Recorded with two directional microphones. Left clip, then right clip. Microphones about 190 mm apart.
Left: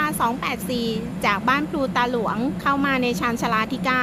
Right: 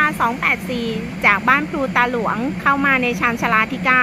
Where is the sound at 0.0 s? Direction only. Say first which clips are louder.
Right 5 dB; 15° left (ahead or behind).